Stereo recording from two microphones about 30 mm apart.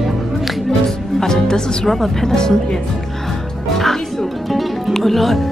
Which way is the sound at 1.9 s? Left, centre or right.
Centre.